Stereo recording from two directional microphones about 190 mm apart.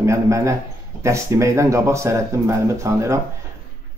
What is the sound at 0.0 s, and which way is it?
Speech, 15° right (ahead or behind).